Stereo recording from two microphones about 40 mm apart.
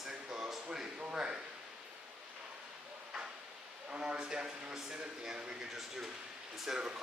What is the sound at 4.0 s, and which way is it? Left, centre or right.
Speech, right.